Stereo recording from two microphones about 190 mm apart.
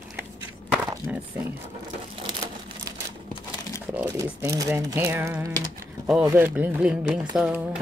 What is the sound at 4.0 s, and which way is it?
Speech, 15° right (ahead or behind).